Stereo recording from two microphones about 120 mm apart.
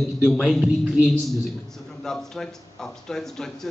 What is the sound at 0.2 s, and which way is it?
Speech, centre (ahead or behind).